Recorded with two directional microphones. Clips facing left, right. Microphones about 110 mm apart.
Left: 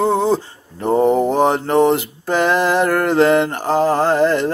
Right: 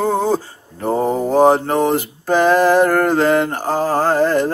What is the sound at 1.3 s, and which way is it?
Mantra, 35° right (ahead or behind).